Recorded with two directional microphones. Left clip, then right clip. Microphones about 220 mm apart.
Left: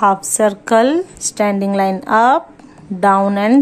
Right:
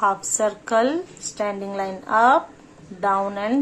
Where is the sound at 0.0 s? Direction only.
35° left (ahead or behind).